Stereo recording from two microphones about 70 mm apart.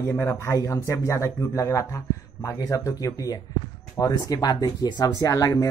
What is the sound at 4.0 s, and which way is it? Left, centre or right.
Speech, left.